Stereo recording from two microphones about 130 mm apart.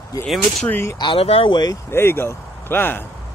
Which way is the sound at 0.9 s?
40° left (ahead or behind).